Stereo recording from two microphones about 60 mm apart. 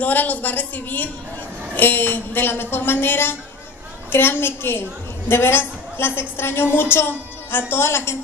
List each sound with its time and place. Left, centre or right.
0.0 s a woman's voice: left